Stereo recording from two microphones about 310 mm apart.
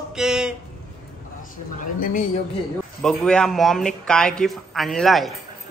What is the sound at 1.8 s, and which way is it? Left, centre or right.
Speech, left.